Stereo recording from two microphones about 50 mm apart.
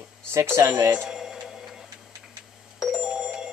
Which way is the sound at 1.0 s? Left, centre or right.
Centre.